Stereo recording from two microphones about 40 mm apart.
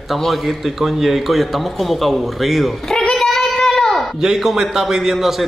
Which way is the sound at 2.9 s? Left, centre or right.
Centre.